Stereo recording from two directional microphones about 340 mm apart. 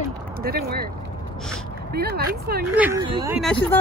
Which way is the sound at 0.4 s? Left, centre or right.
Right.